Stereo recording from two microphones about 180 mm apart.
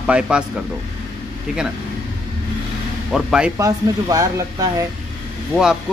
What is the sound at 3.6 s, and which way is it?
Speech, 20° right (ahead or behind).